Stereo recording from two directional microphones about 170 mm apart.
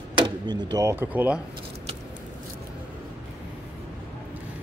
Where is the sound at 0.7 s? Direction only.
15° right (ahead or behind).